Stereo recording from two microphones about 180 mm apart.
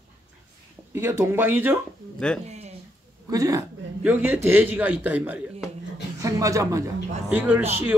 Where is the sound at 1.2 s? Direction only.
10° right (ahead or behind).